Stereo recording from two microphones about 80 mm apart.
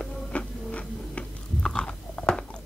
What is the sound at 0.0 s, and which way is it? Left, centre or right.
Biting, centre.